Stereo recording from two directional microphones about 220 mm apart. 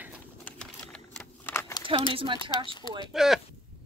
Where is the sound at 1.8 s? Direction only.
25° right (ahead or behind).